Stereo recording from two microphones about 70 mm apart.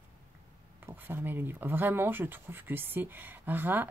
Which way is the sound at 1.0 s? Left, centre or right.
Right.